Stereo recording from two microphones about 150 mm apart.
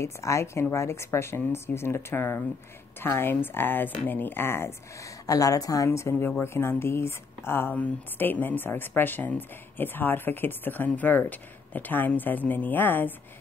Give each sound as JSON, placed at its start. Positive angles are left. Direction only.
{"t": 0.0, "sound": "speech", "side_deg": 20}